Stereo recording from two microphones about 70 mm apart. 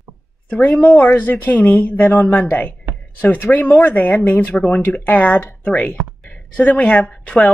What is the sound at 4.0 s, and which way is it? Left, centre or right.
Speech, centre.